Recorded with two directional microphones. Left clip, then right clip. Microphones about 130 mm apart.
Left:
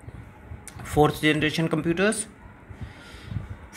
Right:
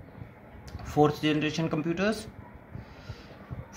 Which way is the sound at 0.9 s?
45° left (ahead or behind).